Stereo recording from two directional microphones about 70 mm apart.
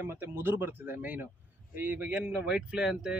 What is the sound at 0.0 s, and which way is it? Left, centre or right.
A man's voice, right.